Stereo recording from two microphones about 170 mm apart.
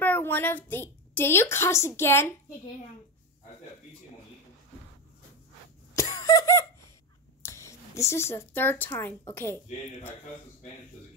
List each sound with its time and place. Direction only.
0.0 s a woman's voice: 10° left (ahead or behind)
5.9 s cough: 20° left (ahead or behind)
7.4 s a woman's voice: 15° left (ahead or behind)